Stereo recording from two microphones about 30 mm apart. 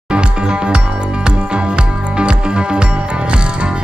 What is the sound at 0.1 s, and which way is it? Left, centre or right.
Music, right.